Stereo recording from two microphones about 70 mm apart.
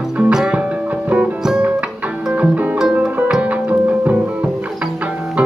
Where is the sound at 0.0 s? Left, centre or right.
Centre.